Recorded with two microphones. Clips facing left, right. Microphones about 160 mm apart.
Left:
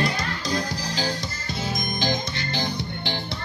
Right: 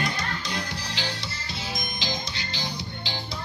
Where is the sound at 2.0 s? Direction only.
55° left (ahead or behind).